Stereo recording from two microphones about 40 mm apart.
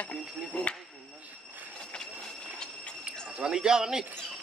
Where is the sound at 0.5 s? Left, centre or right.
Left.